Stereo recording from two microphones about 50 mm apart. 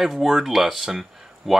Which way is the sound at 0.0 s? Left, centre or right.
Centre.